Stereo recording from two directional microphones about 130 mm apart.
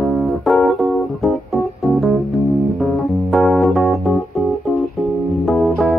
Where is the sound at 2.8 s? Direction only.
Centre (ahead or behind).